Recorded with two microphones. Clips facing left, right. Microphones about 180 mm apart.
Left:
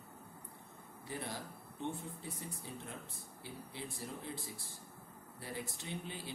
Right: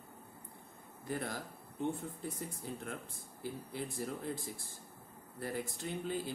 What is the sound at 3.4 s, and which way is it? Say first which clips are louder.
Speech: right 6 dB; 45° right (ahead or behind).